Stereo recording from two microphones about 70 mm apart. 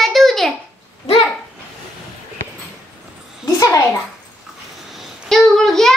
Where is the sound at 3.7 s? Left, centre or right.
Left.